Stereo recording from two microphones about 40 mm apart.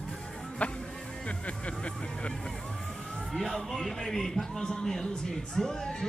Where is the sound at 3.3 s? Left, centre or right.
Centre.